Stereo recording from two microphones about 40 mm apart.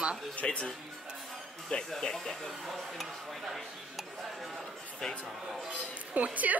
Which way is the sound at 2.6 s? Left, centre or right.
Centre.